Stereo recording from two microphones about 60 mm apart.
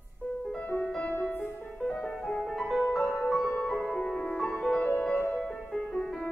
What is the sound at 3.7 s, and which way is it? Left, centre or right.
Music, centre.